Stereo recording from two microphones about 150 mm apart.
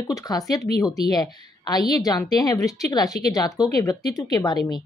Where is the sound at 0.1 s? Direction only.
25° left (ahead or behind).